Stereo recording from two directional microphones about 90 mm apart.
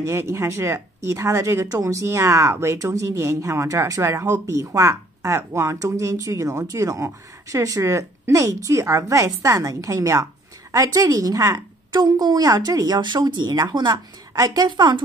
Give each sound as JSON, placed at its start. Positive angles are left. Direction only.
{"t": 0.0, "sound": "a woman's voice", "side_deg": -30}